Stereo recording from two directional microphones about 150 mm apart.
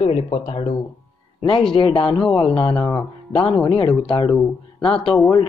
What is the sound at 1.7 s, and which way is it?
Speech, 35° left (ahead or behind).